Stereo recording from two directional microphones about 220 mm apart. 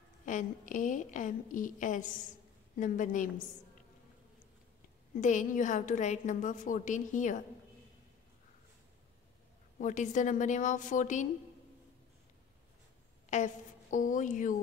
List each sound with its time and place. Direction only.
0.2 s a woman's voice: 35° left (ahead or behind)
5.2 s a woman's voice: 35° left (ahead or behind)
9.8 s a woman's voice: 35° left (ahead or behind)
13.3 s a woman's voice: 35° left (ahead or behind)